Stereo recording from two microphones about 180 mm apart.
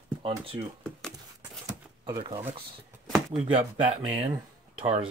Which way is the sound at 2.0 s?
25° right (ahead or behind).